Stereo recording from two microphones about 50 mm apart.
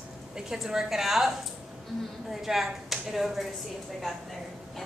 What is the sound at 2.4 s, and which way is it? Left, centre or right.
A woman's voice, centre.